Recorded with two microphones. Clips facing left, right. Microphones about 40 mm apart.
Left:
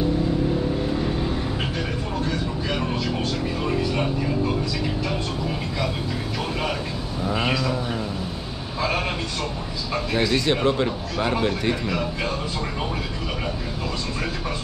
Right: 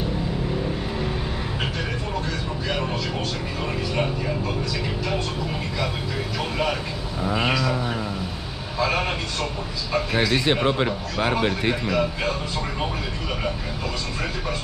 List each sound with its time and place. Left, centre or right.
7.2 s speech: centre
10.1 s speech: right